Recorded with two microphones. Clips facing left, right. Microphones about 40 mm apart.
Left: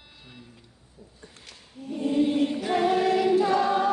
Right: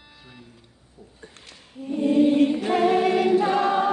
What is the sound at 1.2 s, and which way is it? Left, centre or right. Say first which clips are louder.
Choir: right 2 dB; right.